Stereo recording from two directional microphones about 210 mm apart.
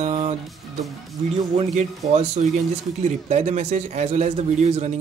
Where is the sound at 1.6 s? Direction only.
30° right (ahead or behind).